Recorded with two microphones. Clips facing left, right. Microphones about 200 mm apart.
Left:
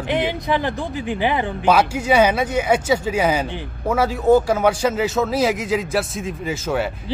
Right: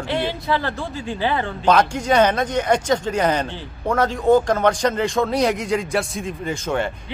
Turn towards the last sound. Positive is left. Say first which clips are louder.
# left 1 dB
turn(degrees=5)  # may be behind; listen again after turning